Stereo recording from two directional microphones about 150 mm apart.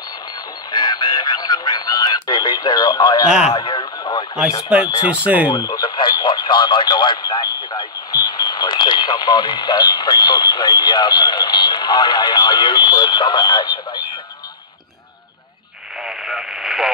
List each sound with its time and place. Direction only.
0.7 s radio: 30° left (ahead or behind)
3.3 s speech: 5° right (ahead or behind)
3.5 s radio: 30° left (ahead or behind)
4.6 s speech: 5° right (ahead or behind)
5.5 s speech: 30° left (ahead or behind)
16.0 s radio: 5° right (ahead or behind)